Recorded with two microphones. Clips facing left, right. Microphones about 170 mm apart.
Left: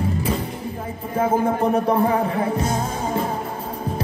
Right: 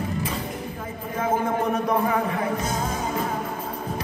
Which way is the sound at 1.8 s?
30° left (ahead or behind).